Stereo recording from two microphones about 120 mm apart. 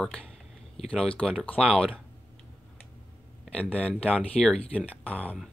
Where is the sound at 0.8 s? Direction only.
55° left (ahead or behind).